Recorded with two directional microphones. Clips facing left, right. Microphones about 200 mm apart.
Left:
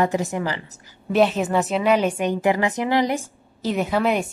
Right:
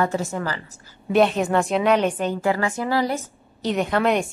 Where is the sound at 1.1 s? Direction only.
5° left (ahead or behind).